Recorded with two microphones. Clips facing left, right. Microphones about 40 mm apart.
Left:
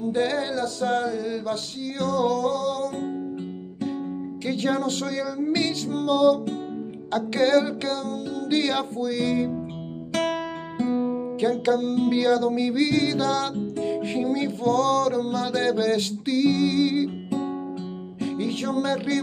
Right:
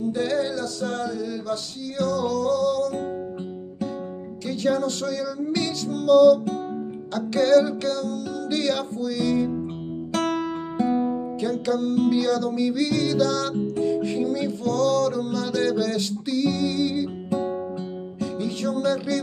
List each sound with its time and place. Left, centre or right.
0.1 s music: left
4.5 s music: left
11.4 s music: left
18.2 s music: left